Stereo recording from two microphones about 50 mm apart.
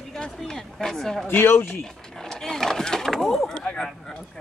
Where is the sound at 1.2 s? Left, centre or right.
Left.